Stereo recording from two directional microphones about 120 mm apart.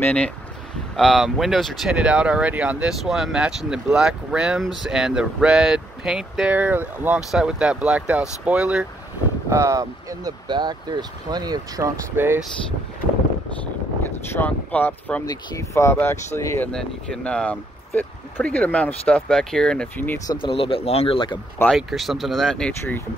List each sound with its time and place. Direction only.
0.0 s speech: 10° left (ahead or behind); by 8.8 s 10° right (ahead or behind)
9.5 s speech: 25° right (ahead or behind)
12.2 s speech: 15° right (ahead or behind)
14.0 s speech: 20° left (ahead or behind)
15.2 s speech: 25° left (ahead or behind)
16.7 s speech: 5° left (ahead or behind)
20.3 s speech: 45° left (ahead or behind)
21.6 s speech: centre (ahead or behind)